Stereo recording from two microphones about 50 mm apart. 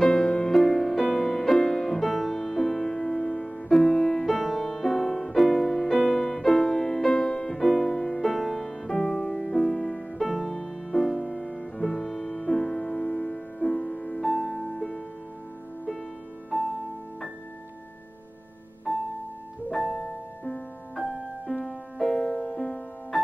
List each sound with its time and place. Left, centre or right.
0.0 s music: centre
19.7 s piano: centre
20.0 s music: centre
21.5 s music: centre